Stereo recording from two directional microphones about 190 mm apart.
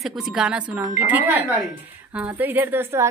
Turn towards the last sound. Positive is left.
turn(degrees=-10)  # may be behind; listen again after turning